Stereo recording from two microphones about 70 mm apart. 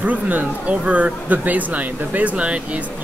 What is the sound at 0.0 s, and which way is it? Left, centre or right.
Speech, right.